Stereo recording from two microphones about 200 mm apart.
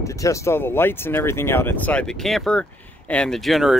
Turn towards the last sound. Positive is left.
turn(degrees=0)  # may be behind; listen again after turning